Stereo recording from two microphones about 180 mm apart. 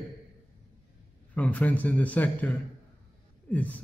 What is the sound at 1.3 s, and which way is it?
A man's voice, 10° left (ahead or behind).